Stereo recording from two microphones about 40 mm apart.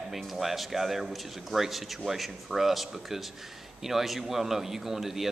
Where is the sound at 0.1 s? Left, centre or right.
Centre.